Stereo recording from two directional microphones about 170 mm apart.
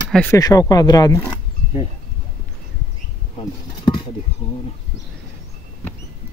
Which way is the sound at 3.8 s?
25° left (ahead or behind).